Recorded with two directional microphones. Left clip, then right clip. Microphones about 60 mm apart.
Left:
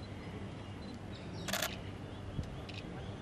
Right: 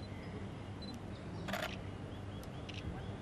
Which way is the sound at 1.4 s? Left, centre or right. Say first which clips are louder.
Left 3 dB; left.